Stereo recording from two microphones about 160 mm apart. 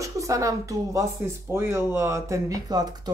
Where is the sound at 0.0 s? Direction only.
20° right (ahead or behind).